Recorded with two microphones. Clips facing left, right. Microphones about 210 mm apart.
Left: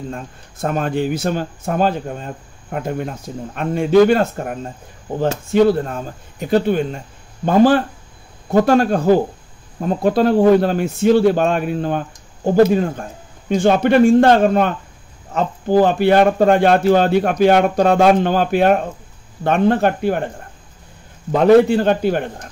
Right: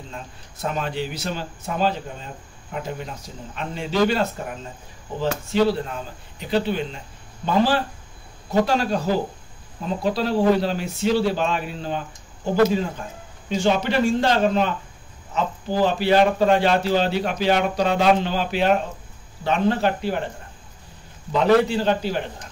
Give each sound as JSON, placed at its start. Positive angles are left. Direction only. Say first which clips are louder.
{"t": 0.1, "sound": "speech", "louder": "left 7 dB", "side_deg": 50}
{"t": 21.3, "sound": "speech", "louder": "left 7 dB", "side_deg": 50}